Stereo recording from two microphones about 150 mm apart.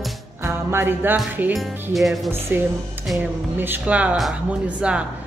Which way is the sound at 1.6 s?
Centre (ahead or behind).